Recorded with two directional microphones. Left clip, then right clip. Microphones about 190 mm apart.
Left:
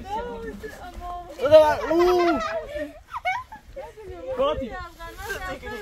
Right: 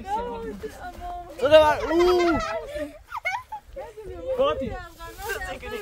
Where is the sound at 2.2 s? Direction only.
40° right (ahead or behind).